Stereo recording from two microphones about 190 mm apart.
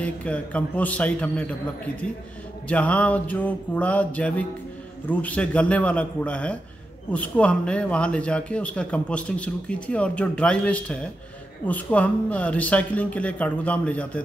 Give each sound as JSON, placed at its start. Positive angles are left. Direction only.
{"t": 0.0, "sound": "a man's voice", "side_deg": 5}
{"t": 2.7, "sound": "a man's voice", "side_deg": 5}